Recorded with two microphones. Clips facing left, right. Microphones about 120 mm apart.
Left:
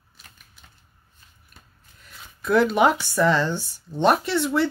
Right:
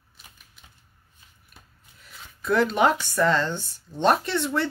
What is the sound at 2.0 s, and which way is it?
Speech, 5° left (ahead or behind).